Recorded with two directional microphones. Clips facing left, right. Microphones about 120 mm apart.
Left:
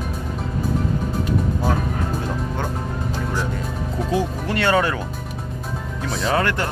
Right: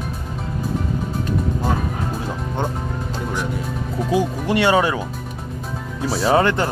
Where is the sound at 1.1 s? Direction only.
Centre (ahead or behind).